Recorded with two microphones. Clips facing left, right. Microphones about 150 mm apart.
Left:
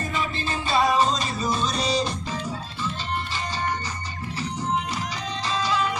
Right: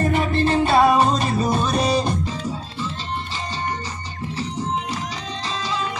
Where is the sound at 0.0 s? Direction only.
60° right (ahead or behind).